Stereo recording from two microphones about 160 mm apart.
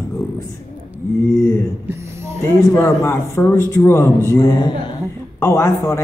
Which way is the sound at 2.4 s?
15° left (ahead or behind).